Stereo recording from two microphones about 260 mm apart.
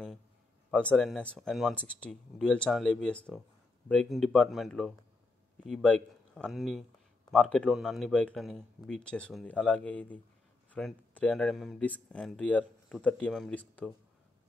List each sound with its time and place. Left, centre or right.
0.7 s speech: centre